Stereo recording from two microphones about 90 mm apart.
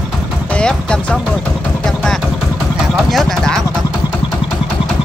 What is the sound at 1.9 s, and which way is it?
Vehicle, 5° left (ahead or behind).